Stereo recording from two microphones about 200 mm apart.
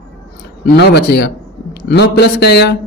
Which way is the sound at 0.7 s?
55° left (ahead or behind).